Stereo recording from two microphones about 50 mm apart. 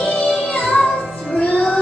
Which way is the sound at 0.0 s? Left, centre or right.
Left.